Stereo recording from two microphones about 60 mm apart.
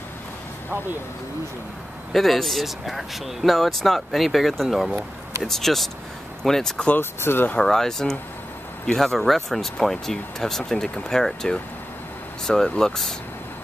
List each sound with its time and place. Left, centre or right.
2.1 s speech: centre
7.0 s speech: left
7.6 s speech: centre